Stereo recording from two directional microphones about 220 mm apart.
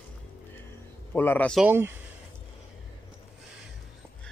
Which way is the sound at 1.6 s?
10° right (ahead or behind).